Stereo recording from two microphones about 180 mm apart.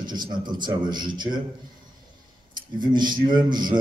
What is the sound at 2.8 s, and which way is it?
Speech, 25° right (ahead or behind).